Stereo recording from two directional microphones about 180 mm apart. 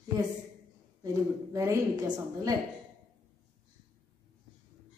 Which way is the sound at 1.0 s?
15° right (ahead or behind).